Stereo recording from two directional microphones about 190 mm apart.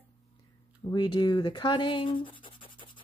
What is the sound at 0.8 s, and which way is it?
A woman's voice, 20° left (ahead or behind).